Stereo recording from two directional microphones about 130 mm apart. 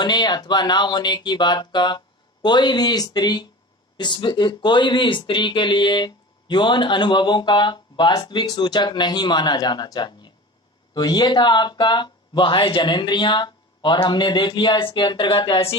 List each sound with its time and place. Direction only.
0.0 s speech: 35° left (ahead or behind)